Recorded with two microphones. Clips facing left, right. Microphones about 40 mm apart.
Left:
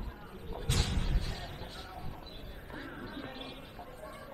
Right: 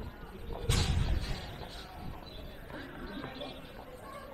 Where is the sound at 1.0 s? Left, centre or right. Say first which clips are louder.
Right 1 dB; right.